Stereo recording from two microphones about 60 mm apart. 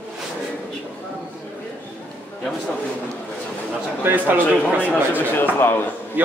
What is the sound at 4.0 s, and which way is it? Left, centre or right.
A man's voice, right.